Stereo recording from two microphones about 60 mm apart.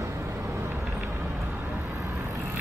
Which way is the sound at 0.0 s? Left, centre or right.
Right.